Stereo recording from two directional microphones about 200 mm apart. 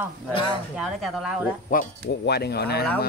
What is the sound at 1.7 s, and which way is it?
Speech, 50° left (ahead or behind).